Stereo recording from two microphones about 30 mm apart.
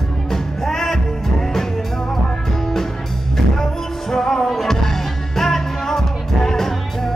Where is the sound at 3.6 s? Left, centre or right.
Centre.